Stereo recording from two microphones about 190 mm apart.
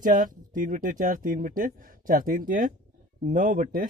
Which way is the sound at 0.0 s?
45° right (ahead or behind).